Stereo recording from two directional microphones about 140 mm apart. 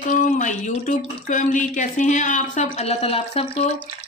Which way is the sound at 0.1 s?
65° left (ahead or behind).